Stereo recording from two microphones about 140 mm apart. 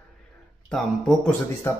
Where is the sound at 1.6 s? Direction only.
15° left (ahead or behind).